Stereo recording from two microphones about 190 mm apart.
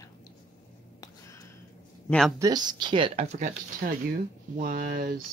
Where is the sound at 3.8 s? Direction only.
50° right (ahead or behind).